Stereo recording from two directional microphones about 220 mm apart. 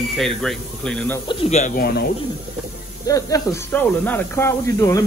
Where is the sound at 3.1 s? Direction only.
15° left (ahead or behind).